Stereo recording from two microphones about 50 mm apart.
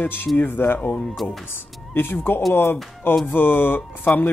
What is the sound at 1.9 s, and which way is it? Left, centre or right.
Speech, left.